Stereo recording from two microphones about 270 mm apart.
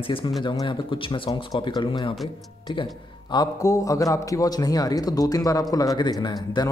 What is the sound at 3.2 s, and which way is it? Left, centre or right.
A man's voice, centre.